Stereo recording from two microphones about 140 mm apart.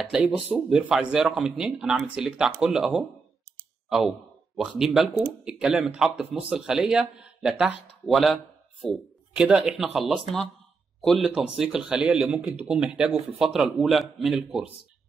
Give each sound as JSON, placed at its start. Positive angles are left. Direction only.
{"t": 0.0, "sound": "speech", "side_deg": -5}
{"t": 4.6, "sound": "speech", "side_deg": -5}